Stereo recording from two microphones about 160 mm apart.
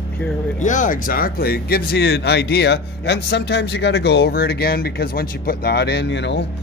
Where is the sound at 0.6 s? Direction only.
50° left (ahead or behind).